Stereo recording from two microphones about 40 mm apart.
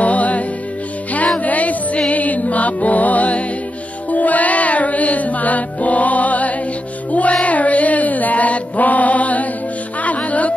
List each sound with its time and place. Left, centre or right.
0.0 s music: left
7.4 s mantra: left
10.0 s music: left